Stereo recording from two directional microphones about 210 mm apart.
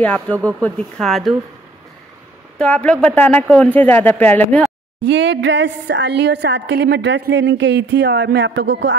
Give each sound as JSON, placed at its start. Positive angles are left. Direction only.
{"t": 0.0, "sound": "speech", "side_deg": 5}
{"t": 2.6, "sound": "speech", "side_deg": 5}
{"t": 5.0, "sound": "a woman's voice", "side_deg": -60}